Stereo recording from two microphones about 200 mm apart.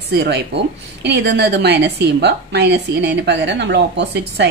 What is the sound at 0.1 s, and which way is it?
A woman's voice, 55° right (ahead or behind).